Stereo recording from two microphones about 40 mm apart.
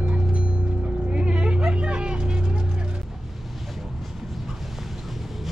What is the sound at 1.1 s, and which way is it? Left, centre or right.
Vehicle, right.